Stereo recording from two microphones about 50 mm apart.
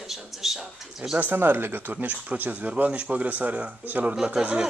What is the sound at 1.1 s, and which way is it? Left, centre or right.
Speech, right.